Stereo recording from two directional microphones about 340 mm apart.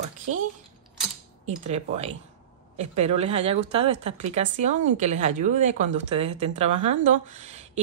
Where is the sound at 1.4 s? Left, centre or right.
Centre.